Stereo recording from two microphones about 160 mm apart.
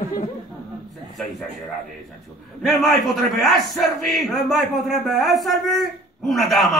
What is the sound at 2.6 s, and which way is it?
Speech, centre (ahead or behind).